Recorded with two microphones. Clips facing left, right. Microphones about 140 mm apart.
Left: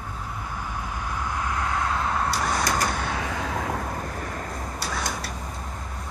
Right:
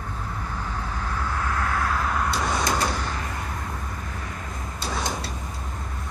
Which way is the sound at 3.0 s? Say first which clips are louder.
Left 3 dB; 80° left.